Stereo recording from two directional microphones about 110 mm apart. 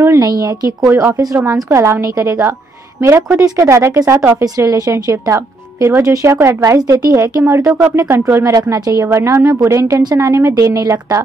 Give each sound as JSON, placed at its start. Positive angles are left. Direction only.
{"t": 0.0, "sound": "speech", "side_deg": -30}